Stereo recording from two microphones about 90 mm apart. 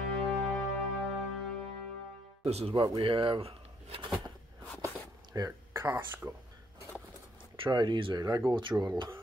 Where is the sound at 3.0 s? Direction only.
75° right (ahead or behind); by 4.1 s 90° right.